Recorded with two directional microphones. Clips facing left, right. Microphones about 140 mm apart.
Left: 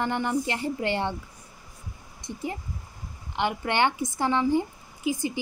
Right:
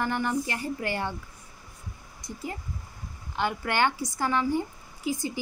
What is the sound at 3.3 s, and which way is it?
Speech, 20° left (ahead or behind).